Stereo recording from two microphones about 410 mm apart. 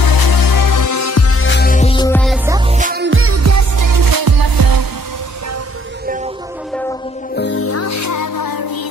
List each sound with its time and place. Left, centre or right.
0.0 s music: left; by 4.8 s right
7.3 s music: left